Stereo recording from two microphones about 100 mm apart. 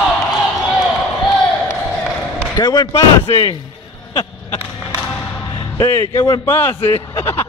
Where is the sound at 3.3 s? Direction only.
80° left.